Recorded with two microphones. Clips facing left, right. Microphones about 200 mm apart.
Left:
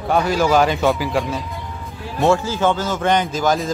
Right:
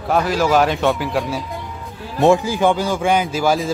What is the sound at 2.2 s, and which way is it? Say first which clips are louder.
A man's voice: right 3 dB; 15° right (ahead or behind).